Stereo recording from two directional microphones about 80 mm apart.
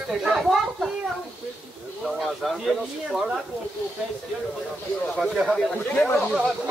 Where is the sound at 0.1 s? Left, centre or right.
Centre.